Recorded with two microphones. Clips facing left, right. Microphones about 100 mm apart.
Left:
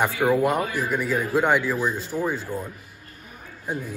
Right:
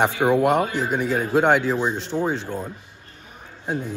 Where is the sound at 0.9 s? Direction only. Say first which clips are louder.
Right 3 dB; 65° right (ahead or behind).